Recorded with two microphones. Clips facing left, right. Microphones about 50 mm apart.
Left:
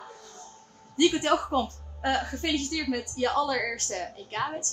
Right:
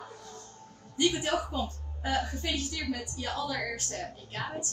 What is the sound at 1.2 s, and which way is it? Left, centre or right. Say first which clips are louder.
A woman's voice: left 6 dB; left.